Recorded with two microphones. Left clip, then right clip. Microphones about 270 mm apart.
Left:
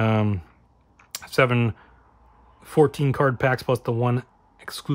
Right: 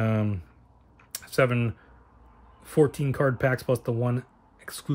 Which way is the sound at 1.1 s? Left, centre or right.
Centre.